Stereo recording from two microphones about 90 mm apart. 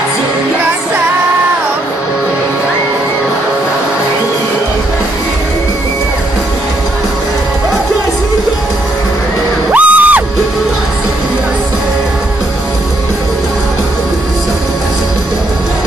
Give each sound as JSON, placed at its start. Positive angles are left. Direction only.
{"t": 9.7, "sound": "music", "side_deg": -15}